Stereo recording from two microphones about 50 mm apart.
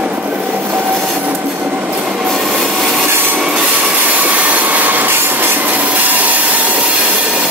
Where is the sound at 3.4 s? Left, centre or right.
Centre.